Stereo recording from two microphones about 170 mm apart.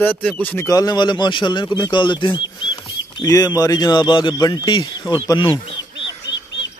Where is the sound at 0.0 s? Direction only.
10° left (ahead or behind); by 5.6 s 30° left (ahead or behind).